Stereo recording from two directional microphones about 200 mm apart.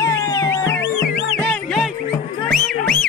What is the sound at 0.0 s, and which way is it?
Music, 15° left (ahead or behind).